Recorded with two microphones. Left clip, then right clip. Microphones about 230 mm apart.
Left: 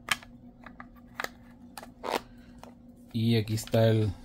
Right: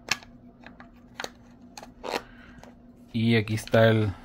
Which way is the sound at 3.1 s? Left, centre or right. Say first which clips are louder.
Right 4 dB; centre.